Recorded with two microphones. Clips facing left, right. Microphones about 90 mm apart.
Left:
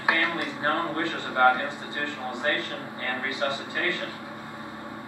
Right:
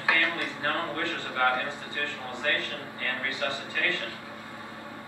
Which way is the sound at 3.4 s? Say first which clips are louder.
Left 4 dB; 20° left (ahead or behind).